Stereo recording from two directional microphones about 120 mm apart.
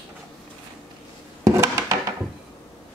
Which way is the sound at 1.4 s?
25° right (ahead or behind).